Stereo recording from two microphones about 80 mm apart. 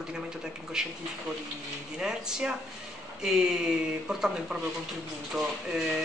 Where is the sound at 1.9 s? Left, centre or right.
Centre.